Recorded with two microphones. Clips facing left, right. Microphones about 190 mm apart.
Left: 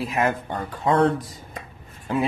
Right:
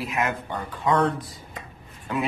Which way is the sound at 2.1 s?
30° left (ahead or behind).